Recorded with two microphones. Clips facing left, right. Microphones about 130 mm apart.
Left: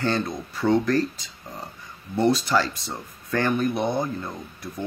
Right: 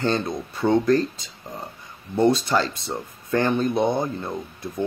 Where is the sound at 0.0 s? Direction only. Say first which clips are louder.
Right 2 dB; 20° right (ahead or behind).